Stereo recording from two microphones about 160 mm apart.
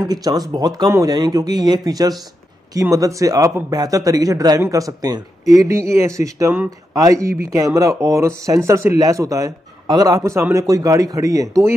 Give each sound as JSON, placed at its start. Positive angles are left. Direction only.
{"t": 0.0, "sound": "speech", "side_deg": -25}